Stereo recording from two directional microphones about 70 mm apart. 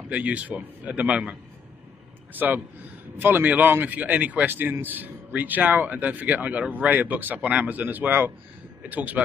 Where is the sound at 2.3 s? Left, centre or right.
Right.